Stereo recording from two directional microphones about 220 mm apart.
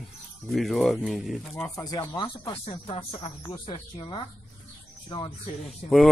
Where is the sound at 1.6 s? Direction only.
15° left (ahead or behind).